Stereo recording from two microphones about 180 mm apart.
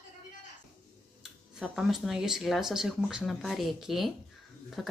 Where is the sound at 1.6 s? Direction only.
Centre (ahead or behind).